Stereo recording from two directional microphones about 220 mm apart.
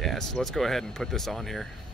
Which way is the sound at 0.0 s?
Centre (ahead or behind).